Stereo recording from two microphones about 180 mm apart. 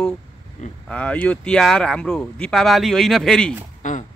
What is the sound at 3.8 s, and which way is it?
Speech, 45° left (ahead or behind).